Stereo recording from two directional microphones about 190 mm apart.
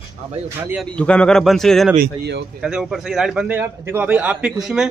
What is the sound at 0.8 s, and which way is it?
A man's voice, 5° left (ahead or behind).